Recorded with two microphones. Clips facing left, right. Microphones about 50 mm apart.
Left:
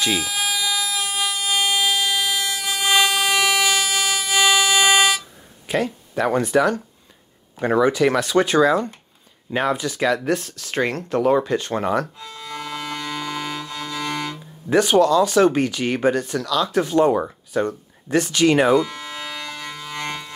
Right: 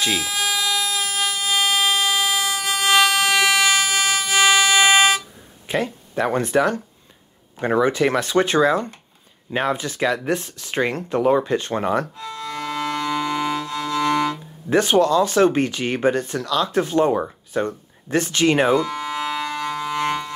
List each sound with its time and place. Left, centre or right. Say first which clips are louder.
0.2 s a sound: right 1 dB; centre
5.7 s speech: left 1 dB; right
7.8 s speech: left 2 dB; right
12.2 s music: right 4 dB; centre
14.7 s speech: left 1 dB; right
18.1 s speech: left 1 dB; right
18.8 s a sound: right 1 dB; centre